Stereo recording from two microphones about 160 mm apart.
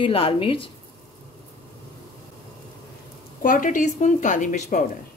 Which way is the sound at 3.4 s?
55° left (ahead or behind).